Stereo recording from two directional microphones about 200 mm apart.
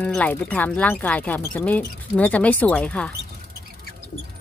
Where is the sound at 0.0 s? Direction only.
5° left (ahead or behind).